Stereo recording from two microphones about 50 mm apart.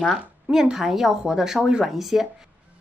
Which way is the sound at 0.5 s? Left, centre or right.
Centre.